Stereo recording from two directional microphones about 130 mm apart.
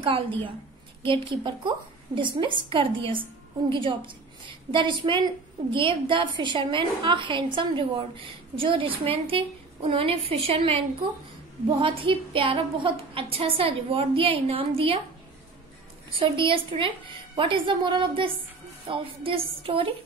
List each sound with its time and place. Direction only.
1.0 s a woman's voice: 35° right (ahead or behind)
16.2 s a woman's voice: 40° right (ahead or behind)